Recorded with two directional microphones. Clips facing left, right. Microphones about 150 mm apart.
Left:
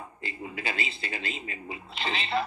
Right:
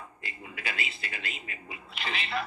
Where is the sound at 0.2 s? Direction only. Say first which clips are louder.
Left 6 dB; 30° left (ahead or behind).